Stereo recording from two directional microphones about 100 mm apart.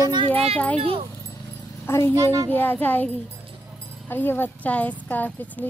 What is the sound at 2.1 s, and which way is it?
Speech, 30° right (ahead or behind).